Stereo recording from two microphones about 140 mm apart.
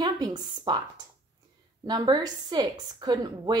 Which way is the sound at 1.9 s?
30° right (ahead or behind).